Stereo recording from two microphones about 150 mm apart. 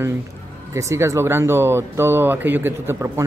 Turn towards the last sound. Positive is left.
turn(degrees=-15)  # may be behind; listen again after turning